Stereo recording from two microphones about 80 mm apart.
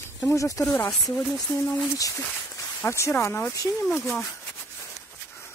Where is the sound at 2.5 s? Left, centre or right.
Left.